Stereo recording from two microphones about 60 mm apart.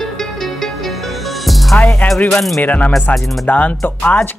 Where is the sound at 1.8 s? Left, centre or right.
Left.